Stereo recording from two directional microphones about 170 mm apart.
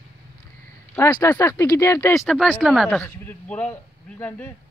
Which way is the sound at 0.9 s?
15° left (ahead or behind).